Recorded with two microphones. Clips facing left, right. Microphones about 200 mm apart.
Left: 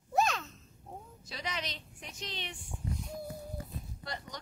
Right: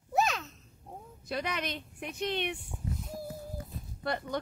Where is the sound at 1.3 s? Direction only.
55° right (ahead or behind).